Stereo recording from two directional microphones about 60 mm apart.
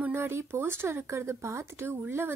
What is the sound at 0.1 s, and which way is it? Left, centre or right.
Speech, right.